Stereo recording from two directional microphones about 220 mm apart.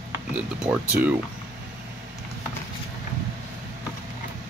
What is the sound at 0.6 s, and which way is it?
Speech, 5° right (ahead or behind).